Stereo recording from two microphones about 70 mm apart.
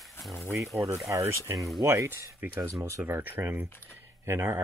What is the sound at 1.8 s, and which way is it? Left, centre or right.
Speech, right.